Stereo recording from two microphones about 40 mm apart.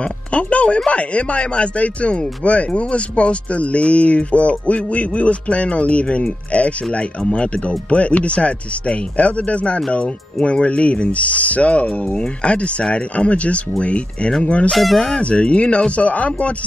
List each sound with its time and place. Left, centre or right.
0.0 s speech: left
14.7 s speech: centre
15.1 s speech: left